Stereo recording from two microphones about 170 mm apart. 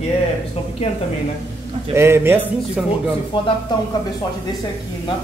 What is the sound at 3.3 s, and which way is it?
Speech, 30° left (ahead or behind).